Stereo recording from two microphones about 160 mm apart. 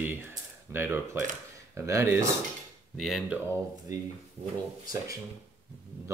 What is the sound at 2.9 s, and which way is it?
Speech, centre (ahead or behind).